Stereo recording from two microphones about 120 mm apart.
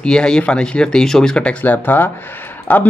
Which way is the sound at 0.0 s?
5° left (ahead or behind).